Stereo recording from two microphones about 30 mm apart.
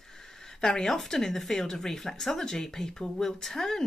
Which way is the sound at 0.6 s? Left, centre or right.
Centre.